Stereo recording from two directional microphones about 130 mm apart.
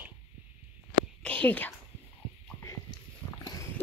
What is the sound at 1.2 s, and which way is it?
Speech, 10° left (ahead or behind).